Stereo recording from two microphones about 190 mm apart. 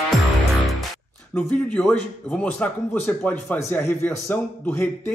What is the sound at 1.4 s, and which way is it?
A man's voice, 10° left (ahead or behind).